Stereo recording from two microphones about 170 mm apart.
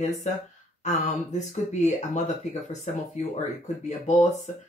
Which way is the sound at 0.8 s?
45° left (ahead or behind).